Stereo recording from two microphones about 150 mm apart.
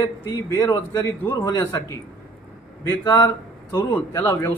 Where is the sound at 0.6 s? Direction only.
20° left (ahead or behind).